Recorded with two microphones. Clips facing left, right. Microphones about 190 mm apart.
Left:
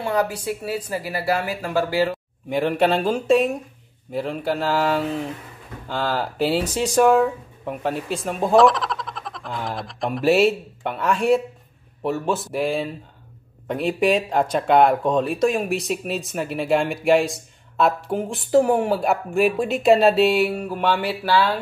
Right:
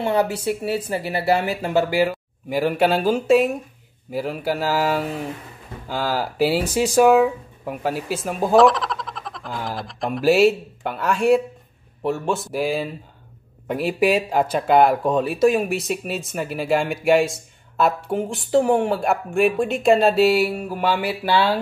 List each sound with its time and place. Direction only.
0.0 s speech: 25° right (ahead or behind)
2.0 s speech: 5° right (ahead or behind)